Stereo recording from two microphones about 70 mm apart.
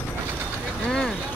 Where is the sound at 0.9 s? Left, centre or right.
Centre.